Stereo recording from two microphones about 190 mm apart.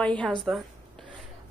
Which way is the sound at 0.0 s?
5° left (ahead or behind).